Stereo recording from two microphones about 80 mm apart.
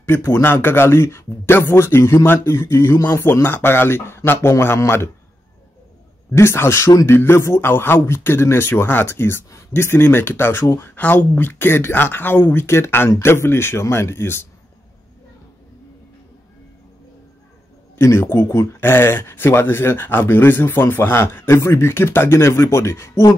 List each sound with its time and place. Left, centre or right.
0.0 s speech: left
6.3 s speech: left
11.0 s speech: left
17.9 s speech: left